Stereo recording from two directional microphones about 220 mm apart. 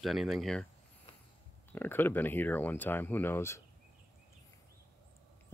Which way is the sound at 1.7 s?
10° left (ahead or behind).